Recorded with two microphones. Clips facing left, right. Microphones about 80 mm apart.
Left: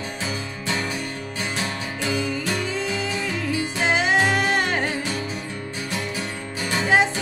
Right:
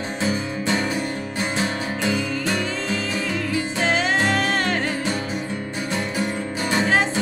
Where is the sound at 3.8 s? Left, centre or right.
Centre.